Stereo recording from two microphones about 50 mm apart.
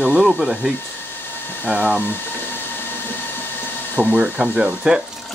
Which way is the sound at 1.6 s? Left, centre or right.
Right.